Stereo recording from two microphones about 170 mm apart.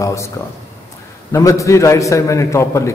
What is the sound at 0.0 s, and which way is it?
Speech, 15° left (ahead or behind).